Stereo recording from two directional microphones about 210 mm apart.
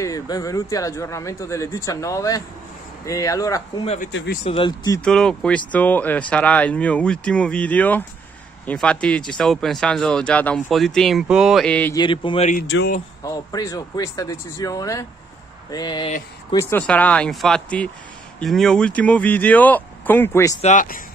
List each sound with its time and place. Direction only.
0.0 s speech: 15° left (ahead or behind)
5.0 s speech: 5° left (ahead or behind)
12.0 s speech: 25° left (ahead or behind)
12.6 s speech: 60° left (ahead or behind)
13.2 s speech: 15° left (ahead or behind)
16.5 s speech: 10° left (ahead or behind)
20.6 s speech: 40° left (ahead or behind)